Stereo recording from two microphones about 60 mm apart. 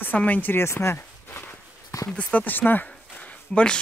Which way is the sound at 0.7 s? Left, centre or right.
Left.